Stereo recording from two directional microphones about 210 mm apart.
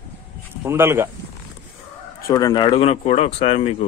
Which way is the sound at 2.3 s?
15° left (ahead or behind).